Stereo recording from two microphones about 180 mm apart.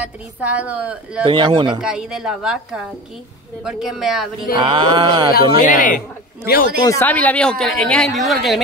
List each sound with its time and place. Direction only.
0.0 s a woman's voice: 5° right (ahead or behind)
1.2 s a sound: 25° right (ahead or behind)
1.8 s a woman's voice: 5° right (ahead or behind)
4.6 s a sound: 25° right (ahead or behind)
5.6 s speech: 45° left (ahead or behind)
6.8 s a woman's voice: 15° left (ahead or behind)